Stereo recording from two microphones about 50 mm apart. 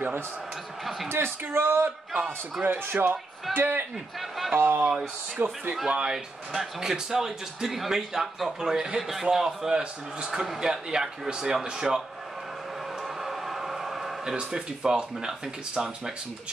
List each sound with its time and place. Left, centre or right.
1.0 s speech: right
5.9 s speech: centre
6.1 s speech: centre
13.2 s a sound: centre
14.3 s speech: centre